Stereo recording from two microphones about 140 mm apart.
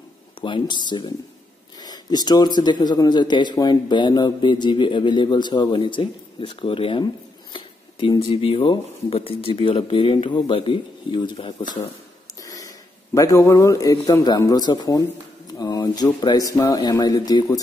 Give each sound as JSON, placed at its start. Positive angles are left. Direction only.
{"t": 0.4, "sound": "speech", "side_deg": 35}
{"t": 12.4, "sound": "a man's voice", "side_deg": 25}